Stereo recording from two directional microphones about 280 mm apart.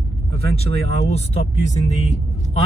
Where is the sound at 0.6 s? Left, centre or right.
Left.